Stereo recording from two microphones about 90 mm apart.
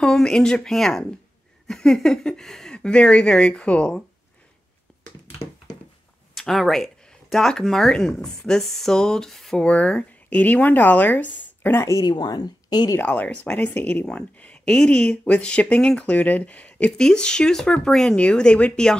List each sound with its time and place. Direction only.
0.0 s speech: 10° left (ahead or behind)
6.3 s speech: 5° left (ahead or behind); by 11.8 s 20° left (ahead or behind)
11.8 s speech: 35° left (ahead or behind)
12.1 s a woman's voice: 50° left (ahead or behind)
13.0 s speech: 15° left (ahead or behind)